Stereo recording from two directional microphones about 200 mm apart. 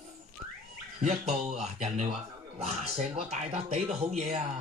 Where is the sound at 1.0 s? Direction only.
35° right (ahead or behind).